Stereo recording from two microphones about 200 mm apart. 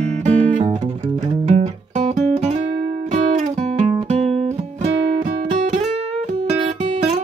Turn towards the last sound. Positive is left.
turn(degrees=-35)  # may be behind; listen again after turning